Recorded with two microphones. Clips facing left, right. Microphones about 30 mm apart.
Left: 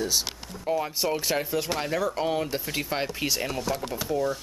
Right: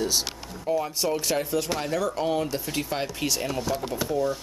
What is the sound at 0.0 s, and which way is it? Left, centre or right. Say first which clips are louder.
Speech: right 1 dB; centre.